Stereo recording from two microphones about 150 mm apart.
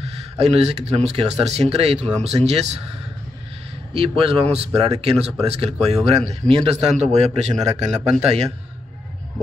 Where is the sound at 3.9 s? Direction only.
40° right (ahead or behind).